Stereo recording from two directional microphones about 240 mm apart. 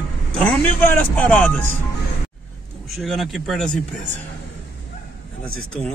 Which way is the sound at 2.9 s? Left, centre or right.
Centre.